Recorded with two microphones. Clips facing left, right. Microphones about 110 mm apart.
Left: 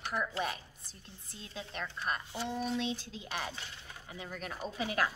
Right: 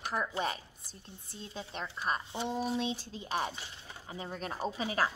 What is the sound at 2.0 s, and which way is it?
Speech, 15° right (ahead or behind).